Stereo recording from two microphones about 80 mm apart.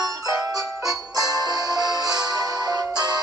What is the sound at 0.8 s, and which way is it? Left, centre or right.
Music, right.